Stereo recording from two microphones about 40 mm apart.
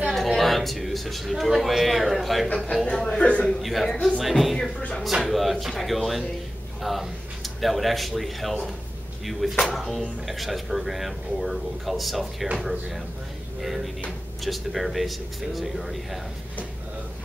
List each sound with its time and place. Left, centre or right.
0.1 s speech: centre
3.2 s a man's voice: left
3.6 s speech: centre
14.4 s speech: centre